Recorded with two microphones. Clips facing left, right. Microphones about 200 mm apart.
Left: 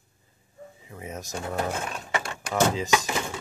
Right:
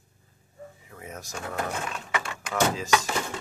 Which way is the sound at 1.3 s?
35° left (ahead or behind).